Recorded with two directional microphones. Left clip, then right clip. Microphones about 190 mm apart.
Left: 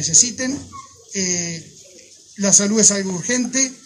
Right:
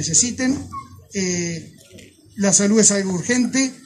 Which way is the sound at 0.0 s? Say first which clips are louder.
Left 2 dB; 15° left (ahead or behind).